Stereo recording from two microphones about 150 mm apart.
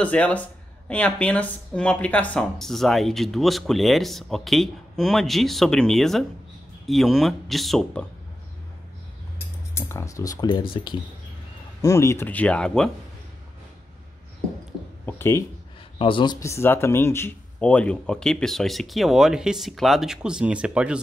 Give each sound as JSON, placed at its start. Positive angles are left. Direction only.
{"t": 0.0, "sound": "speech", "side_deg": 10}
{"t": 9.8, "sound": "speech", "side_deg": 20}
{"t": 11.8, "sound": "speech", "side_deg": 20}
{"t": 15.0, "sound": "speech", "side_deg": 15}
{"t": 16.0, "sound": "speech", "side_deg": 35}
{"t": 16.3, "sound": "speech", "side_deg": 20}